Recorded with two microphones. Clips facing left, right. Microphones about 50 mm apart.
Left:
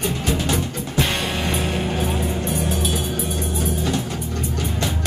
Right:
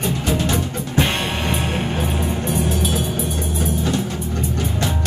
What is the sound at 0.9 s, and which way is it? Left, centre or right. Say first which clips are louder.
Music: right 2 dB; right.